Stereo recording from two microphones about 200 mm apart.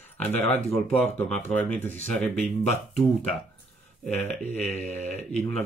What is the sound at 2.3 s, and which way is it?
Speech, 35° left (ahead or behind).